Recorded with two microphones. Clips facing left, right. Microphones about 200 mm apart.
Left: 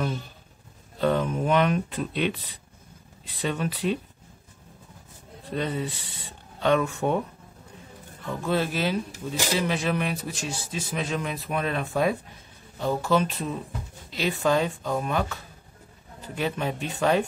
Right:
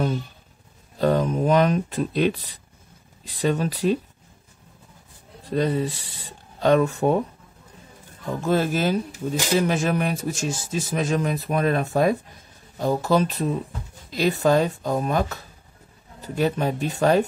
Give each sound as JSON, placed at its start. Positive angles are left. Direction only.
{"t": 0.9, "sound": "speech", "side_deg": -40}
{"t": 5.5, "sound": "speech", "side_deg": -40}
{"t": 8.3, "sound": "speech", "side_deg": -45}